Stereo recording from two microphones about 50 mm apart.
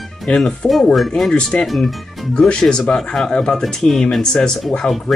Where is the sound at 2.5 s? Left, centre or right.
Centre.